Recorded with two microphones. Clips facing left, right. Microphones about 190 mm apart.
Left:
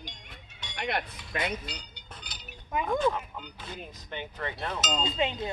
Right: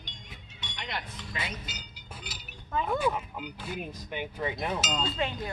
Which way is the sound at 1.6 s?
5° right (ahead or behind).